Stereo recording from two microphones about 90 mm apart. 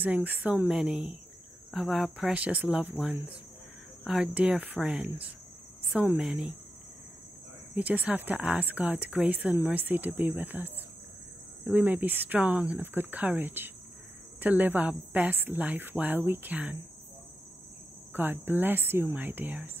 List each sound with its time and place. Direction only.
0.0 s a woman's voice: 20° right (ahead or behind)
7.7 s a woman's voice: 15° right (ahead or behind)
11.7 s speech: 20° right (ahead or behind)
18.1 s speech: 20° right (ahead or behind)